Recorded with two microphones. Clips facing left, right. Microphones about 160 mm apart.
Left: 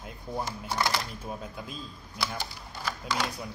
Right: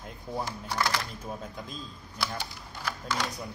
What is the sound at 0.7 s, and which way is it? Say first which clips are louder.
Speech: even; 25° left (ahead or behind).